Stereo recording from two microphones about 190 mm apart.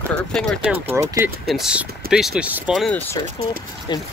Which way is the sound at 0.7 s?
15° right (ahead or behind).